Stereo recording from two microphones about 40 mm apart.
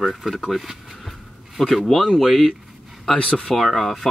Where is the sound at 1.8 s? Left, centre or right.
Centre.